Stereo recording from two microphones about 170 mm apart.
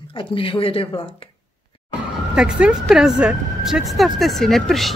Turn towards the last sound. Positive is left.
turn(degrees=0)  # may be behind; listen again after turning